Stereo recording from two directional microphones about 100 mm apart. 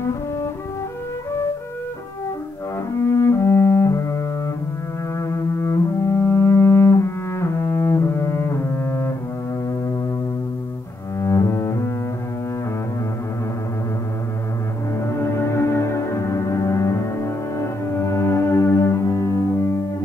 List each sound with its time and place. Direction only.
3.1 s music: 25° left (ahead or behind)
5.2 s cello: 30° left (ahead or behind)
11.1 s cello: 30° left (ahead or behind)
15.0 s music: 25° left (ahead or behind)